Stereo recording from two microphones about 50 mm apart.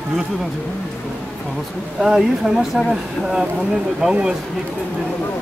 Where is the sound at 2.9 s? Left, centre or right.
Centre.